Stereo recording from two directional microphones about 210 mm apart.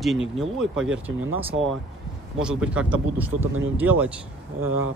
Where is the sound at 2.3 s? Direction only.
5° right (ahead or behind).